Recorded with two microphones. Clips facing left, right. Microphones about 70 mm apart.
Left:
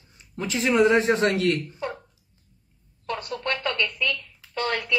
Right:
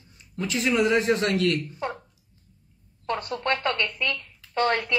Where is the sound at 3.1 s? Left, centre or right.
Right.